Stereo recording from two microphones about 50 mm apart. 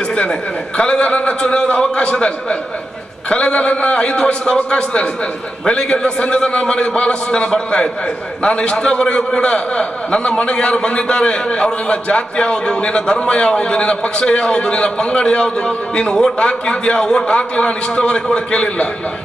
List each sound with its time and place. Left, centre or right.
0.1 s a man's voice: centre